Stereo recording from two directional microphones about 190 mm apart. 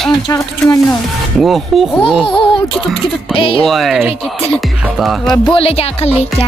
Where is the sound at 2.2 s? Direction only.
25° left (ahead or behind).